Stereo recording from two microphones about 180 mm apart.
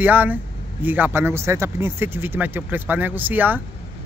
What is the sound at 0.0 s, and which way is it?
Speech, 10° right (ahead or behind).